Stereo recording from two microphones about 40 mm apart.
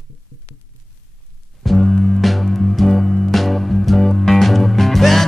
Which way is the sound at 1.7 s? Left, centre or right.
Centre.